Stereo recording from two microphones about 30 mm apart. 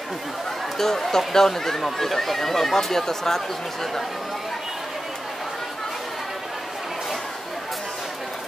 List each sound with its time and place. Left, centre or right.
0.7 s speech: centre